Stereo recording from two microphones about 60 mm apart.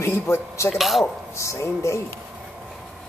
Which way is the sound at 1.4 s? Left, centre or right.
Left.